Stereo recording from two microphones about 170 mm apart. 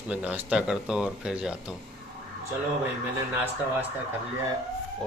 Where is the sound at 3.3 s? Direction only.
10° right (ahead or behind).